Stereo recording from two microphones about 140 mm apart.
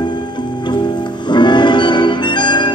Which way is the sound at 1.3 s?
35° left (ahead or behind).